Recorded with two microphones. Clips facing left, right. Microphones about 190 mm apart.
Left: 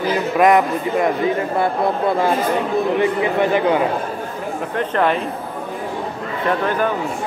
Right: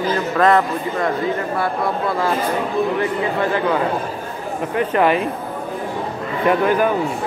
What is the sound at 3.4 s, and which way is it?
Speech, 20° left (ahead or behind).